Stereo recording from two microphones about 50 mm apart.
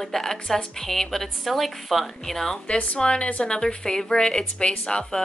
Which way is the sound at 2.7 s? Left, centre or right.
Left.